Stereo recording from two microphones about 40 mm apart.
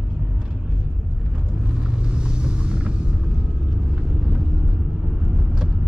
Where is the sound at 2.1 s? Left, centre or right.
Right.